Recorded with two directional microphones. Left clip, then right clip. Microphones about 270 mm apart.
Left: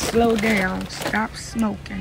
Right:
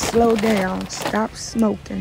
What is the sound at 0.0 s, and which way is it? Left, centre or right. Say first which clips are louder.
Speech: right 2 dB; centre.